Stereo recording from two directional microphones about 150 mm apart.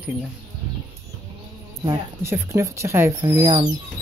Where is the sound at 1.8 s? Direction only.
15° right (ahead or behind).